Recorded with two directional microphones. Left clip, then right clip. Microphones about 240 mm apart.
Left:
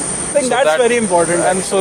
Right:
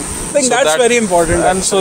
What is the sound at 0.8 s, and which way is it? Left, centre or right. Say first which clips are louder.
Speech: right 2 dB; right.